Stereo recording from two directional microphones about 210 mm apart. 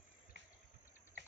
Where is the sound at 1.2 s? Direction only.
55° right (ahead or behind).